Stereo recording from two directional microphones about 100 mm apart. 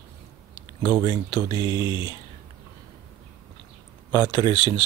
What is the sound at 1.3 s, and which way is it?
Speech, 50° left (ahead or behind).